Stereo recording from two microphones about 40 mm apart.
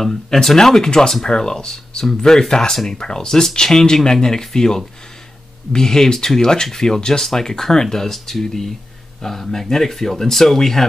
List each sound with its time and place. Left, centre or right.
0.0 s speech: centre